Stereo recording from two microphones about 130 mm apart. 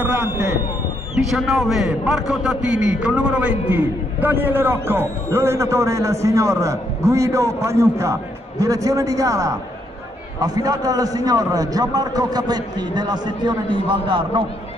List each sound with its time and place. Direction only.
0.0 s a man's voice: 10° right (ahead or behind); by 14.4 s 40° right (ahead or behind)